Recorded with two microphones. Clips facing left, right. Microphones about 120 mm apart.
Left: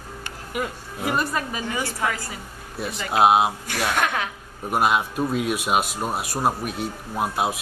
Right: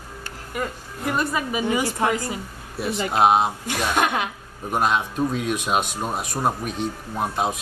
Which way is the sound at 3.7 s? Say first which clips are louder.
Right 2 dB; 20° right (ahead or behind).